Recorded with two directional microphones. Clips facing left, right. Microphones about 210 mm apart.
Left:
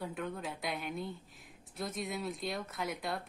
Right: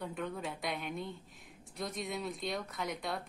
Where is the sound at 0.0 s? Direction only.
Centre (ahead or behind).